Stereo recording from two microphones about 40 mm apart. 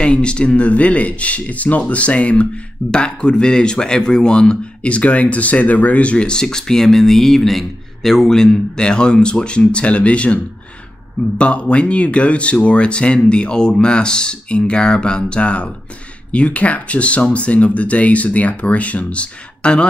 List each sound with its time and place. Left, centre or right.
0.0 s speech: left